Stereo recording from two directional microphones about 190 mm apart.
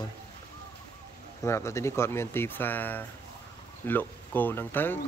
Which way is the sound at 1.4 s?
15° left (ahead or behind).